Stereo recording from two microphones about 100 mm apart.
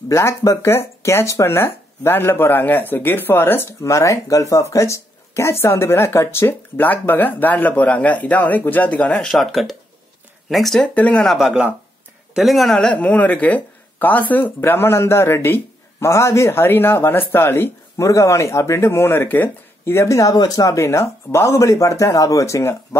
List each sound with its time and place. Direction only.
0.1 s speech: 30° left (ahead or behind); by 9.3 s 15° left (ahead or behind)
9.3 s speech: centre (ahead or behind)
11.0 s speech: 15° left (ahead or behind)
11.2 s speech: 5° right (ahead or behind)
12.7 s speech: 10° left (ahead or behind); by 22.8 s 30° left (ahead or behind)